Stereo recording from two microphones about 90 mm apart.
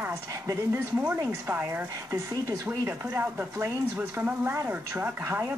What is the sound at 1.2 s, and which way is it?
Speech, 30° right (ahead or behind).